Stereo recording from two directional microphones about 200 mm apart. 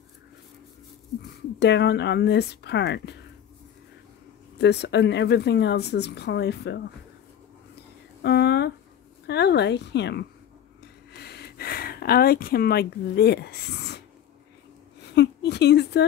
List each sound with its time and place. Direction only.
1.6 s speech: 55° left (ahead or behind)
4.6 s speech: 55° left (ahead or behind)
8.2 s a sound: 55° left (ahead or behind)
9.3 s speech: 55° left (ahead or behind)
11.1 s gasp: 55° left (ahead or behind)
15.1 s a sound: 55° left (ahead or behind)